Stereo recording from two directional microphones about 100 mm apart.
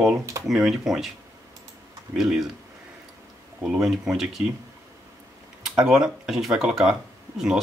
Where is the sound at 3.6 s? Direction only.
5° right (ahead or behind).